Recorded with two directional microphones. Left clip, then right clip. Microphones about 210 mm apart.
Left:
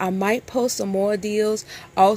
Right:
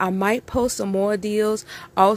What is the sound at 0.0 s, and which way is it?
Speech, 10° right (ahead or behind).